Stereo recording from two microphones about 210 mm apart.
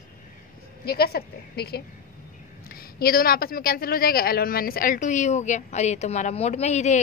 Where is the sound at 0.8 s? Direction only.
45° left (ahead or behind).